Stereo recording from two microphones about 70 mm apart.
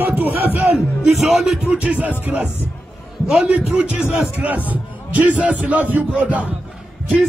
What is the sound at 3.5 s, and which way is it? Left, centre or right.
Speech, centre.